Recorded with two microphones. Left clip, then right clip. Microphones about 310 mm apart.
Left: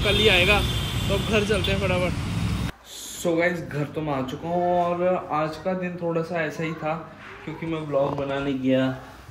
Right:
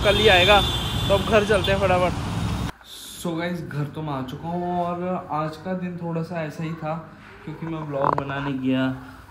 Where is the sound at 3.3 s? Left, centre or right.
Centre.